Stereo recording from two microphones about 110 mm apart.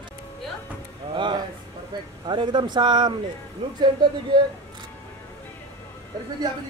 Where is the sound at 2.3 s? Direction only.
45° right (ahead or behind).